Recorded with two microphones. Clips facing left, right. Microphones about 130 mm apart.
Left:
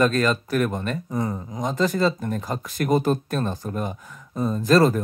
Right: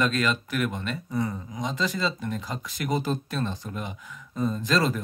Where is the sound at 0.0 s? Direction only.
40° left (ahead or behind).